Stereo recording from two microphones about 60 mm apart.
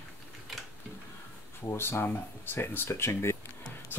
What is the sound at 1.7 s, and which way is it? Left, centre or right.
Speech, left.